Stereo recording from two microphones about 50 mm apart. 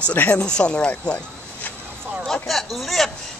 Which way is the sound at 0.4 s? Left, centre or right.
Centre.